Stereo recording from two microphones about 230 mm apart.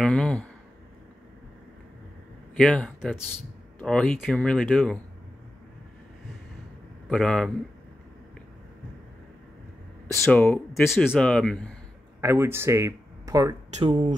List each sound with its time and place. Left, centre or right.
0.0 s speech: centre
2.5 s speech: centre
7.1 s speech: centre
10.2 s speech: centre
12.2 s speech: centre